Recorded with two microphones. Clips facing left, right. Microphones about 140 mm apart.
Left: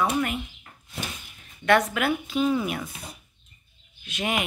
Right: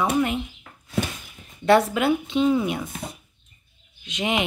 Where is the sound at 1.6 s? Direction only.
30° right (ahead or behind).